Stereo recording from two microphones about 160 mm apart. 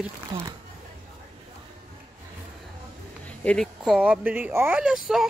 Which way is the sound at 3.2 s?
5° left (ahead or behind).